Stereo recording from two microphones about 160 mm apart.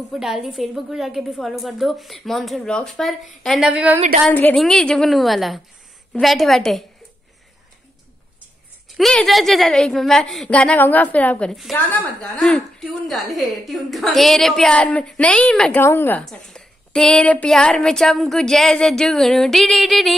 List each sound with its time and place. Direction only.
0.1 s a woman's voice: 5° right (ahead or behind)
4.3 s a woman's voice: 10° left (ahead or behind)
8.9 s a woman's voice: centre (ahead or behind)